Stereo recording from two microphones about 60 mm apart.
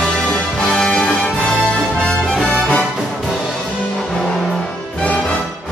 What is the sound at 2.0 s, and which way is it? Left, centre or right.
Music, centre.